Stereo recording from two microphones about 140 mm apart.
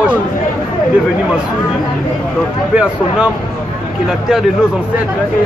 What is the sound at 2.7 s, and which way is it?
Speech, 5° right (ahead or behind).